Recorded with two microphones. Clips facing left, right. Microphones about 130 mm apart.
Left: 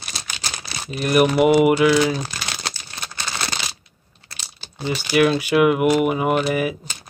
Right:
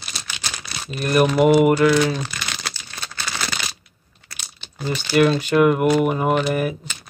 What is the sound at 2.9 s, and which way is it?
Crumpling, 15° left (ahead or behind).